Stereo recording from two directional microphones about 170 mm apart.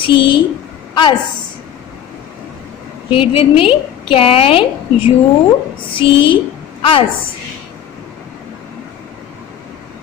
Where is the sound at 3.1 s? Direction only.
30° left (ahead or behind).